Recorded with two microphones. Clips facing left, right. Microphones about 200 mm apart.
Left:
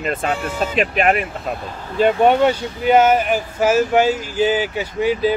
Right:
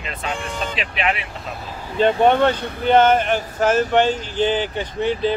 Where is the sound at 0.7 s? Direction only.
45° left (ahead or behind).